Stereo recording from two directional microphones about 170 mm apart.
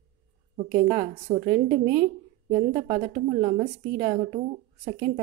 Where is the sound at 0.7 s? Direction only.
45° right (ahead or behind).